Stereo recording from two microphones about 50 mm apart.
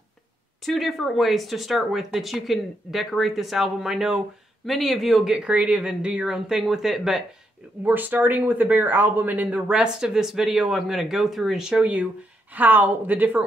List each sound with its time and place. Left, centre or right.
0.7 s speech: centre
5.4 s speech: right; by 7.2 s centre
7.8 s speech: right
9.7 s speech: centre
12.5 s speech: right